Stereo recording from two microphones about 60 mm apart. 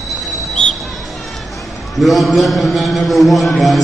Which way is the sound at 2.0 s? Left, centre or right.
Centre.